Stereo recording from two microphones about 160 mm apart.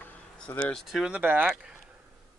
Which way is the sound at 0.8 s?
5° right (ahead or behind).